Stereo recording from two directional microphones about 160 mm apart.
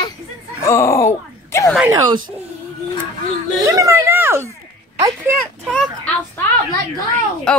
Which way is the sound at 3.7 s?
20° right (ahead or behind).